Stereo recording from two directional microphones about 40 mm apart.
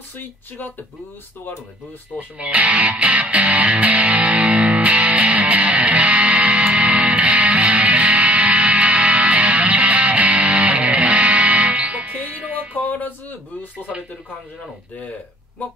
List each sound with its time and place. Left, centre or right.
2.1 s music: right
6.6 s music: right
6.9 s music: right
12.8 s speech: left